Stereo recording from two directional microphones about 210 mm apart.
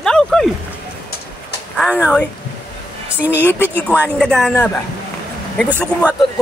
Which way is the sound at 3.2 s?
10° right (ahead or behind).